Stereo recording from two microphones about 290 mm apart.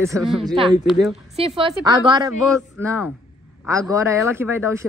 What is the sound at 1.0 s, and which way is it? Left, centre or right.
Speech, centre.